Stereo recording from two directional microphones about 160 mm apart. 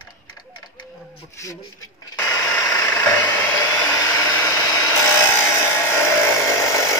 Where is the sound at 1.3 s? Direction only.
20° left (ahead or behind).